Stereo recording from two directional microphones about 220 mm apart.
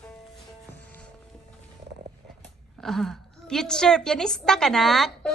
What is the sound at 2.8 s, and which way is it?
A woman's voice, centre (ahead or behind).